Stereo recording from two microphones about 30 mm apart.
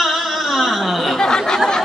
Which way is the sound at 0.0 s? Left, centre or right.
Centre.